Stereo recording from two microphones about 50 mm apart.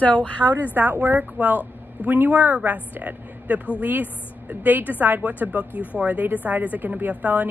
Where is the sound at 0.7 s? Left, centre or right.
Right.